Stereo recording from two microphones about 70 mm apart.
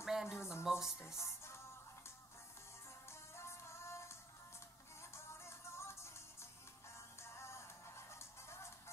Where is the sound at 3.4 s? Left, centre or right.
Left.